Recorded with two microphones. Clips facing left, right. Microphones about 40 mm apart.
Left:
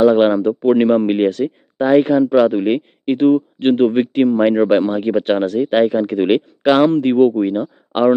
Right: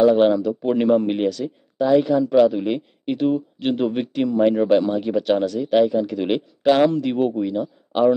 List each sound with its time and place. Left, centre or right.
0.0 s speech: left
2.2 s speech: left